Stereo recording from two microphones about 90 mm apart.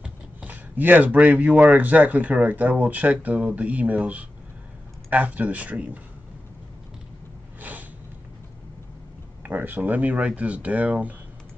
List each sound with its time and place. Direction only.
0.0 s speech: 15° right (ahead or behind)
9.4 s speech: 20° right (ahead or behind)